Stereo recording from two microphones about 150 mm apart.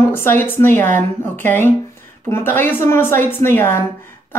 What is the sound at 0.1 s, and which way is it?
Speech, 15° left (ahead or behind).